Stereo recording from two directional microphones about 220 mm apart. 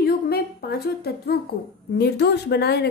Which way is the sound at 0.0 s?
45° left (ahead or behind).